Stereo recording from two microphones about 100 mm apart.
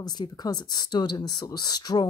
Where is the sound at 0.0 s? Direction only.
45° left (ahead or behind).